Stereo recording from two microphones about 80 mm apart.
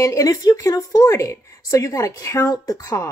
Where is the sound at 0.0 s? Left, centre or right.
Left.